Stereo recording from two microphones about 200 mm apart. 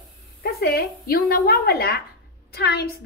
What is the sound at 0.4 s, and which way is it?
A woman's voice, 50° left (ahead or behind).